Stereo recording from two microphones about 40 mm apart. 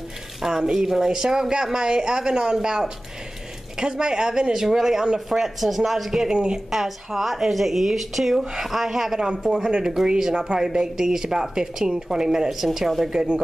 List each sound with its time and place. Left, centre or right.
0.4 s speech: centre
6.3 s a woman's voice: right
6.7 s speech: centre